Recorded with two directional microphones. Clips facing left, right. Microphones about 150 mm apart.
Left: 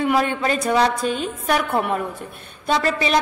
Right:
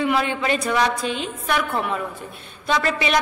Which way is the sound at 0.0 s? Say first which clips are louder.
Left 2 dB; 45° left (ahead or behind).